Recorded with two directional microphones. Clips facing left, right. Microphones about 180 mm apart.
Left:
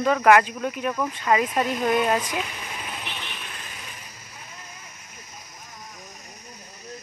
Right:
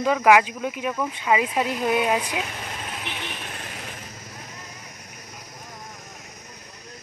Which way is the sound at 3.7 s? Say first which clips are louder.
Right 5 dB; 65° right (ahead or behind).